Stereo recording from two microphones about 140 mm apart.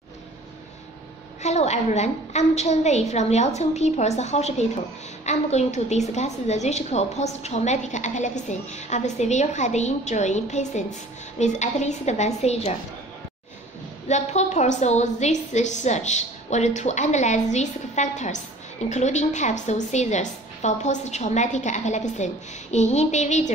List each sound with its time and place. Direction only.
1.4 s a woman's voice: 55° left (ahead or behind)
14.0 s a woman's voice: 55° left (ahead or behind)